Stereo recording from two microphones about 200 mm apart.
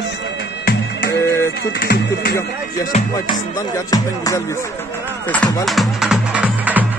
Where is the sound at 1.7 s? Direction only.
55° left (ahead or behind).